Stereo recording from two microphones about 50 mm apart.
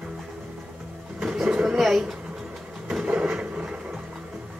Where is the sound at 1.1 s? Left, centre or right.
Centre.